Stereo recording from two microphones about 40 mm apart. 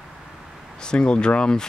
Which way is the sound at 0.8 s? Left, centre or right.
Left.